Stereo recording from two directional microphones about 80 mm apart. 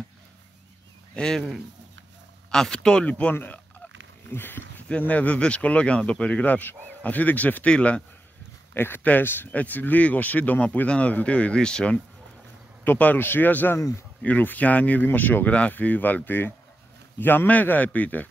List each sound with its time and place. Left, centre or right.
1.1 s speech: centre
2.5 s speech: centre
8.7 s speech: left; by 12.0 s centre
12.8 s speech: left
13.7 s speech: left
14.2 s speech: centre